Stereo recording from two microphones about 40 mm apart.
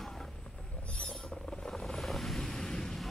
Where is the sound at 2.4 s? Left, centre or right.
Centre.